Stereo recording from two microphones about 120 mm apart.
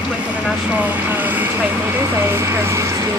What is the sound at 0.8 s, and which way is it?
Vehicle, 15° right (ahead or behind).